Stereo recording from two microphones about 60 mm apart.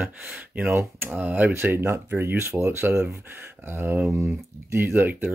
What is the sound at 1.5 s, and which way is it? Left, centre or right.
Speech, right.